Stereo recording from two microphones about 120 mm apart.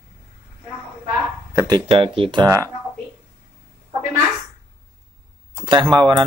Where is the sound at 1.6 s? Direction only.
40° right (ahead or behind).